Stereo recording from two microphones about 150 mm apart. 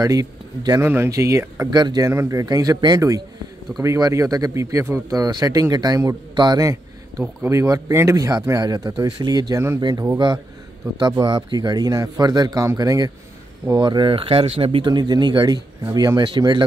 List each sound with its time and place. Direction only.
0.0 s speech: 25° right (ahead or behind)